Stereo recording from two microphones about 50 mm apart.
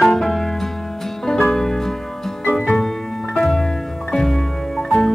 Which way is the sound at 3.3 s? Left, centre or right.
Centre.